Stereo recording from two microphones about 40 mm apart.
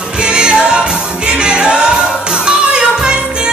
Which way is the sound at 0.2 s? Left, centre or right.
Right.